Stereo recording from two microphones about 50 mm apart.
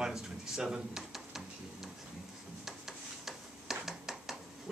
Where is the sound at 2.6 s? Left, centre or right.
Centre.